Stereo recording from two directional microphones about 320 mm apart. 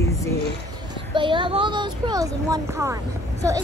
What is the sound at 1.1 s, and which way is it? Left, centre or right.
Speech, centre.